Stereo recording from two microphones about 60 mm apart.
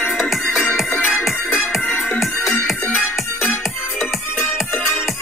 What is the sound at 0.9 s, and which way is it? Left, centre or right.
Music, left.